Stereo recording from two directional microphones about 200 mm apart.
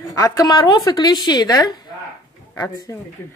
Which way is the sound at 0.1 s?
15° left (ahead or behind).